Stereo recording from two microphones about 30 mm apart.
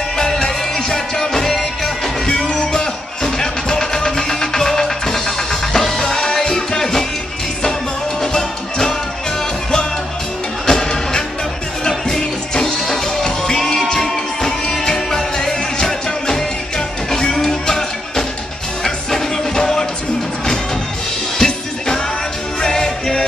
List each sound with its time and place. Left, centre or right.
0.4 s music: left
2.3 s music: left
6.0 s music: left
8.2 s music: centre
10.7 s music: left
21.4 s music: left